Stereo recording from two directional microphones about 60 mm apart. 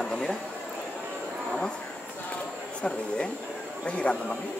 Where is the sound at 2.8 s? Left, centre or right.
Centre.